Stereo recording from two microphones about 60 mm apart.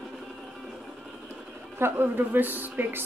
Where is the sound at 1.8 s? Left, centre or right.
Right.